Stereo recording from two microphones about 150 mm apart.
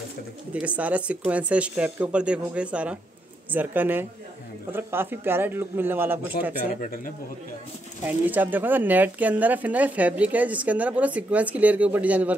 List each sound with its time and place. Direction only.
0.5 s speech: 10° right (ahead or behind)
6.7 s speech: 70° left (ahead or behind)
8.0 s speech: 10° right (ahead or behind)